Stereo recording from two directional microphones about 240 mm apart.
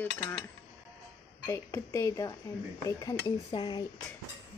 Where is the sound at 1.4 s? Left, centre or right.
Centre.